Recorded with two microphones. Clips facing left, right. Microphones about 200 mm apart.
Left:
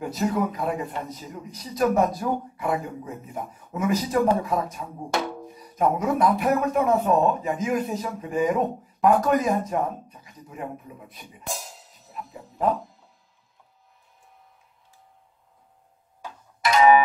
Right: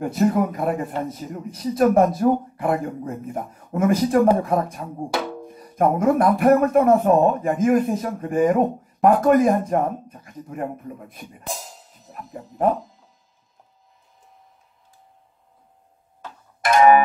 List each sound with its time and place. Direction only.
0.0 s speech: 55° right (ahead or behind)
16.2 s music: 15° left (ahead or behind)
16.6 s speech: 55° right (ahead or behind)